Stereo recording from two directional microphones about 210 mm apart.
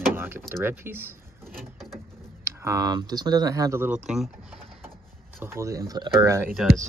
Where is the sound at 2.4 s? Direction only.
15° right (ahead or behind).